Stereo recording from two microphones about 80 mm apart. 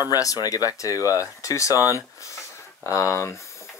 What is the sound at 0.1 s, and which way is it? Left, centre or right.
Speech, left.